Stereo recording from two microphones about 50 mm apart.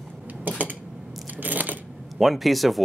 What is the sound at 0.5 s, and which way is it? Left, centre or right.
Dishes, right.